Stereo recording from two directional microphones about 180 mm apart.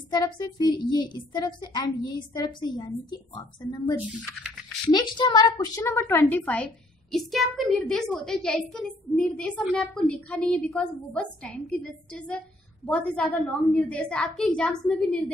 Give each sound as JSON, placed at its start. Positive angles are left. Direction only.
{"t": 0.1, "sound": "a child's voice", "side_deg": 25}
{"t": 4.9, "sound": "a woman's voice", "side_deg": 25}